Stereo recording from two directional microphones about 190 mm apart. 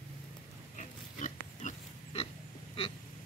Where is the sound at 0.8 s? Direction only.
40° left (ahead or behind).